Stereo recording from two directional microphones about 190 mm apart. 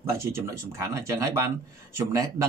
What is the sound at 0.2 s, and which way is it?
Speech, 15° right (ahead or behind).